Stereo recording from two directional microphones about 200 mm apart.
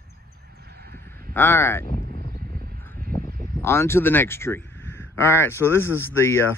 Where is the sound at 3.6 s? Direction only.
10° left (ahead or behind).